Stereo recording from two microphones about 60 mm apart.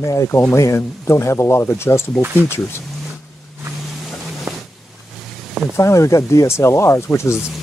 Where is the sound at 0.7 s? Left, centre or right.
Left.